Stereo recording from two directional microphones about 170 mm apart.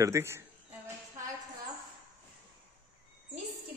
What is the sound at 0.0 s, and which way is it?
Speech, 15° right (ahead or behind).